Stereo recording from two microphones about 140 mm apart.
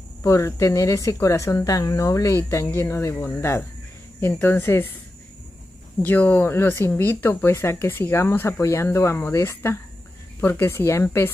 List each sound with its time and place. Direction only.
0.2 s speech: 20° left (ahead or behind)
6.0 s speech: 10° left (ahead or behind)